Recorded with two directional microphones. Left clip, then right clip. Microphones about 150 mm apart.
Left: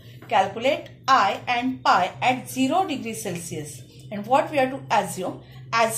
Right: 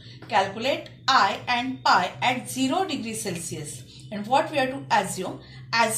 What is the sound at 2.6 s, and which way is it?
Speech, 40° left (ahead or behind).